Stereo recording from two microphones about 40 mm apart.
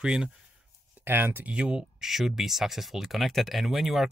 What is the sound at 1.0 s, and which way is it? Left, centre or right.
Speech, right.